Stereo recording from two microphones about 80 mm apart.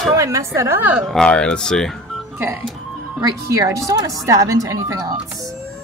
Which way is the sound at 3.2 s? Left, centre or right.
Right.